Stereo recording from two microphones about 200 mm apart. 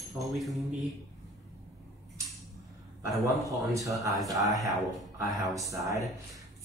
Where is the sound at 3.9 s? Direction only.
15° right (ahead or behind).